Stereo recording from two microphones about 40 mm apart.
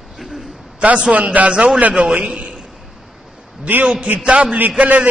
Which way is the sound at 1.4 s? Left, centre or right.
Right.